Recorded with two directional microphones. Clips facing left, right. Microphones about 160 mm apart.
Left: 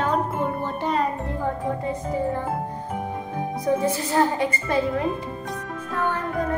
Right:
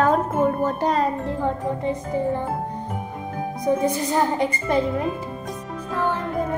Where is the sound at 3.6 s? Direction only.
15° right (ahead or behind).